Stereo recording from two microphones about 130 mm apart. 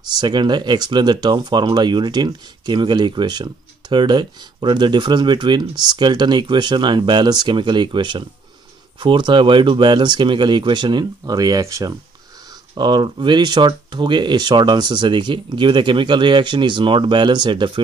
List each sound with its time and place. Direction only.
0.1 s speech: 35° right (ahead or behind)